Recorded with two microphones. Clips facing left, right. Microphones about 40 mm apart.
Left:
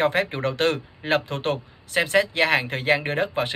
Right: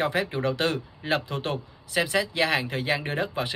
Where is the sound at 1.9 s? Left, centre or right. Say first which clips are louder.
Left 4 dB; left.